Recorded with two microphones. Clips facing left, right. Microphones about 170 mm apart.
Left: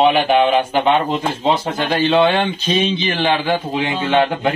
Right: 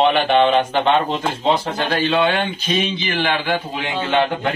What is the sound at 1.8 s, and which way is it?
A man's voice, 25° left (ahead or behind).